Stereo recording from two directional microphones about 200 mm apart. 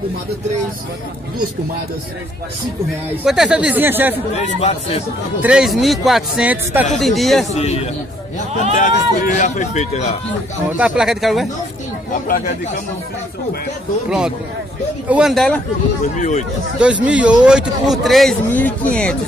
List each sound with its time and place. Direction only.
3.3 s speech: 5° right (ahead or behind)
4.4 s speech: 35° left (ahead or behind)
5.4 s speech: 5° right (ahead or behind)
7.5 s speech: 30° left (ahead or behind)
10.8 s speech: 5° right (ahead or behind)
15.0 s speech: 5° right (ahead or behind)
16.2 s speech: 35° left (ahead or behind)
16.8 s speech: 5° right (ahead or behind)